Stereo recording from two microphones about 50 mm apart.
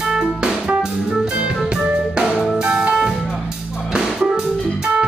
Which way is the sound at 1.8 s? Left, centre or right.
Centre.